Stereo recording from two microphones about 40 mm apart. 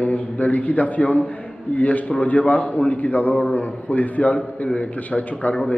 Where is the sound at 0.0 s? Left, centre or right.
Left.